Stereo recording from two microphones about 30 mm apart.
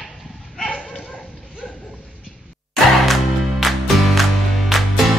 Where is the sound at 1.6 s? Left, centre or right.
Centre.